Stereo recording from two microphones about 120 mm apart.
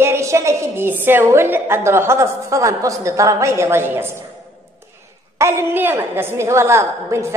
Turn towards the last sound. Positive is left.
turn(degrees=-25)  # may be behind; listen again after turning